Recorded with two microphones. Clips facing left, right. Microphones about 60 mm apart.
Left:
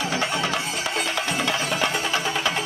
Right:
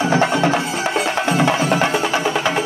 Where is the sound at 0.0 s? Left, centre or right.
Right.